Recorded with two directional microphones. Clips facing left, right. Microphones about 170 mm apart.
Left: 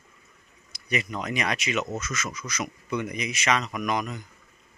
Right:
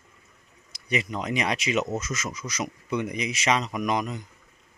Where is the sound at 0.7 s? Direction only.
25° right (ahead or behind).